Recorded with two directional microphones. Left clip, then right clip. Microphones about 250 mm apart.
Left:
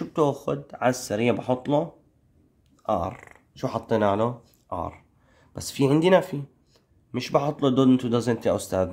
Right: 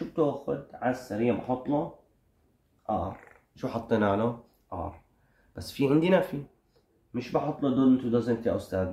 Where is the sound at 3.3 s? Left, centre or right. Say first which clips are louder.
Left 5 dB; left.